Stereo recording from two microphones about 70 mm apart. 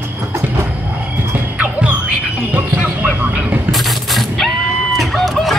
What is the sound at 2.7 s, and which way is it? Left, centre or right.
Vehicle, centre.